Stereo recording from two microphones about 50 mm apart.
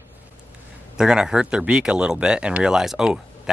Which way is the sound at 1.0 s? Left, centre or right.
Centre.